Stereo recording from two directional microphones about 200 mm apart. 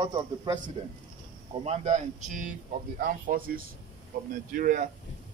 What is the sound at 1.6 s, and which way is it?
Speech, 35° right (ahead or behind).